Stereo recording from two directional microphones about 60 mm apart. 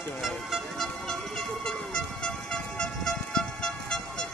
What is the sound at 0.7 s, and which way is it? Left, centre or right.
Vehicle, centre.